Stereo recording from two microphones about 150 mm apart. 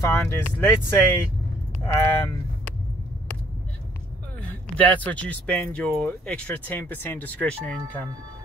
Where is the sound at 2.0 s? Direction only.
20° left (ahead or behind).